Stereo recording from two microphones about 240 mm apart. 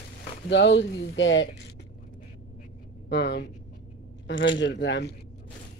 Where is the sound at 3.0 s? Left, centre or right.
Left.